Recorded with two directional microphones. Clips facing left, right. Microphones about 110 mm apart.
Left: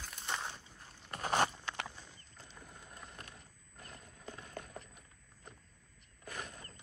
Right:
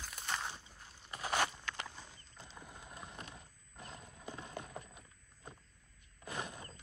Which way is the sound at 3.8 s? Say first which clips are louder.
Right 2 dB; 20° right (ahead or behind).